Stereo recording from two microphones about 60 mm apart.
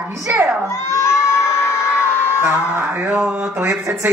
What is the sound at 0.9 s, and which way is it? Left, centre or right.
Crowd, left.